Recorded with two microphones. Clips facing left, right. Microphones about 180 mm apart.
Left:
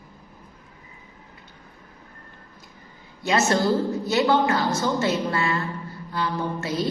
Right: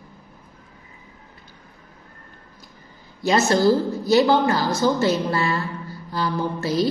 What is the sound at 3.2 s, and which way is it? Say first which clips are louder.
A woman's voice: right 3 dB; 35° right (ahead or behind).